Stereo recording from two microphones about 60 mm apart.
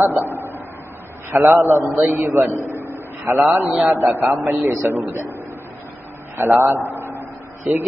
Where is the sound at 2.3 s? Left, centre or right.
Right.